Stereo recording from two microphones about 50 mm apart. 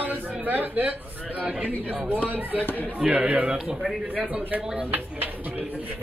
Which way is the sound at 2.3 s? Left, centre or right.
Right.